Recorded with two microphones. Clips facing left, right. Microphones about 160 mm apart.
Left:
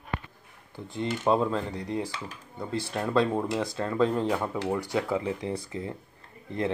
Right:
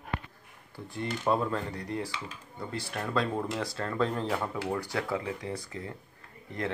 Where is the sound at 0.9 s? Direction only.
25° left (ahead or behind).